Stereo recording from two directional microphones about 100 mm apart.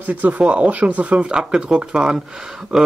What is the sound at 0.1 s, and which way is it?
Speech, 15° right (ahead or behind).